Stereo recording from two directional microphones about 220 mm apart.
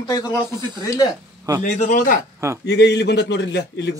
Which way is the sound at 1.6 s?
35° left (ahead or behind).